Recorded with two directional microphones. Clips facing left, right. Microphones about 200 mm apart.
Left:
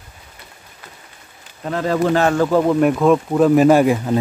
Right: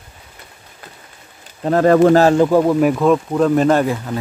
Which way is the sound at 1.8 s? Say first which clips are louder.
Right 7 dB; 50° right (ahead or behind).